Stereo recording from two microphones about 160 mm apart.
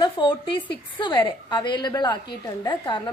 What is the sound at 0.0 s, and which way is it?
A woman's voice, 30° left (ahead or behind).